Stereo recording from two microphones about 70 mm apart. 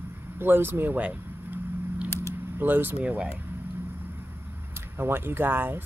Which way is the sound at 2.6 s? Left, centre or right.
Right.